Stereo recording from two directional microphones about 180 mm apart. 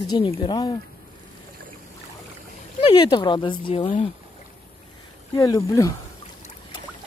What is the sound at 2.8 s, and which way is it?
Speech, 25° left (ahead or behind).